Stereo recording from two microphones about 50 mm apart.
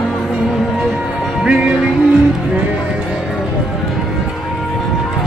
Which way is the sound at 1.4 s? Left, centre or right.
Centre.